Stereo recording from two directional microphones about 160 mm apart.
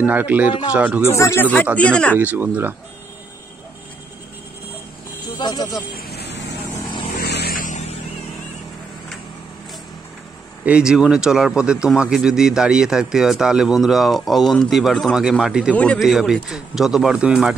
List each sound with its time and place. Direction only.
0.0 s speech: 10° right (ahead or behind)
1.0 s a man's voice: 20° left (ahead or behind)
2.1 s speech: 10° right (ahead or behind)
5.4 s speech: 25° left (ahead or behind)
5.9 s vehicle: 85° left; by 8.0 s 50° left (ahead or behind)
10.6 s speech: 5° right (ahead or behind)
15.7 s a man's voice: 5° left (ahead or behind)
16.0 s speech: 5° right (ahead or behind)